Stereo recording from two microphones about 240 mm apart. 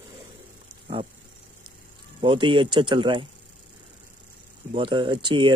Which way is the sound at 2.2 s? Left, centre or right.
Right.